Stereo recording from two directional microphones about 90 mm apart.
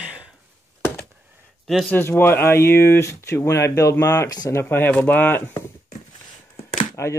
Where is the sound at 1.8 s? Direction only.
25° left (ahead or behind).